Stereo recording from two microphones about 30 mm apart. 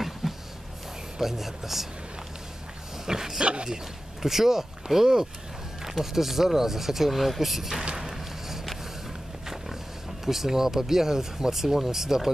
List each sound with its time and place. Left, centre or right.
0.2 s a sound: centre
1.2 s speech: centre
3.1 s speech: centre
3.4 s speech: right
4.2 s speech: centre
8.2 s a sound: centre
10.2 s speech: centre